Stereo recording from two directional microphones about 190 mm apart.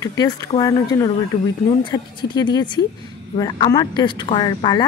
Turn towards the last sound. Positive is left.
turn(degrees=20)  # may be behind; listen again after turning